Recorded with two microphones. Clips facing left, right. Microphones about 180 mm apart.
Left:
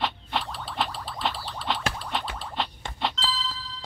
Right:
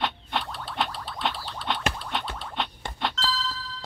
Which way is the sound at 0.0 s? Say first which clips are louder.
Even; centre (ahead or behind).